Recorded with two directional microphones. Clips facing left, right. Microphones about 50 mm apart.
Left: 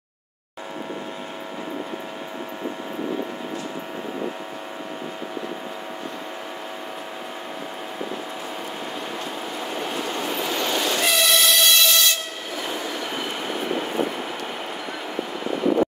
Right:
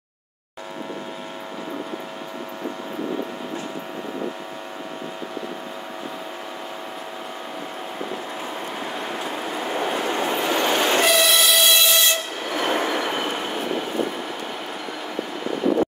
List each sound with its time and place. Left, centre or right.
9.8 s train: right
11.1 s train: centre
12.4 s train: right